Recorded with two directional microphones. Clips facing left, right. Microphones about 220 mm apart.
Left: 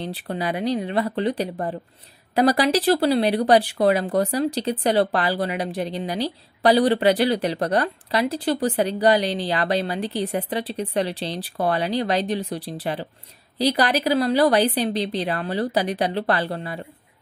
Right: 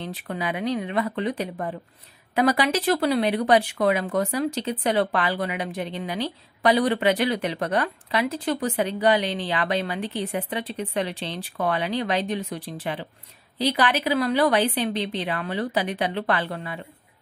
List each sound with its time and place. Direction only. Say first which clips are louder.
0.0 s speech: left 3 dB; 35° left (ahead or behind)